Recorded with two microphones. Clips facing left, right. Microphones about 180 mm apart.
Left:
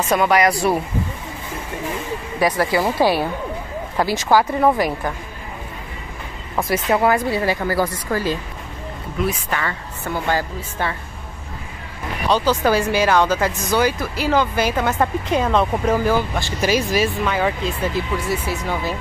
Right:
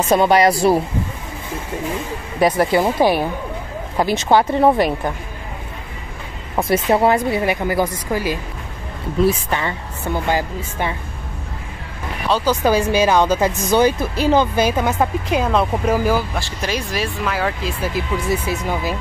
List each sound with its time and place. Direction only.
0.1 s a woman's voice: 30° right (ahead or behind)
2.4 s a woman's voice: 25° right (ahead or behind)
6.5 s a woman's voice: 25° right (ahead or behind)
9.2 s a woman's voice: 25° right (ahead or behind)
12.3 s speech: 10° right (ahead or behind)